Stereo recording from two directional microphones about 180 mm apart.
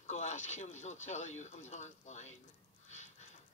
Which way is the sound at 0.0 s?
40° left (ahead or behind).